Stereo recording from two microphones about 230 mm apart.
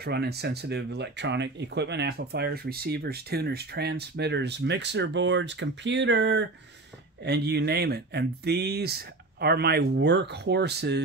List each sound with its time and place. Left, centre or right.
0.0 s speech: right